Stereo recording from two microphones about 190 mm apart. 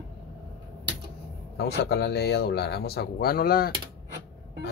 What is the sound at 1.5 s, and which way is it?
Speech, 60° left (ahead or behind).